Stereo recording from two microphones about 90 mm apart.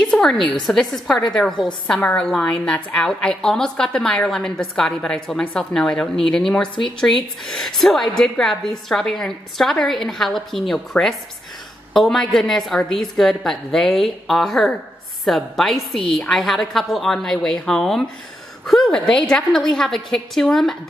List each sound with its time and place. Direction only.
0.1 s a woman's voice: 5° left (ahead or behind)
2.0 s a woman's voice: 20° left (ahead or behind)
2.2 s a woman's voice: 10° left (ahead or behind)